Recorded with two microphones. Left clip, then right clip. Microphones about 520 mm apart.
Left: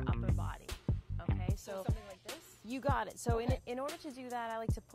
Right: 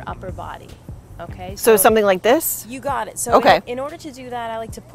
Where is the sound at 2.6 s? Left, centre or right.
Left.